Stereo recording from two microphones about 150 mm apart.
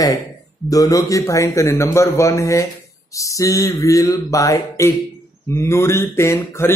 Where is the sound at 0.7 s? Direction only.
25° left (ahead or behind).